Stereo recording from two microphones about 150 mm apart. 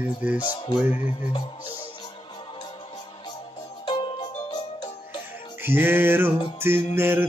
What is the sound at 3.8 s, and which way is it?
Music, 35° left (ahead or behind).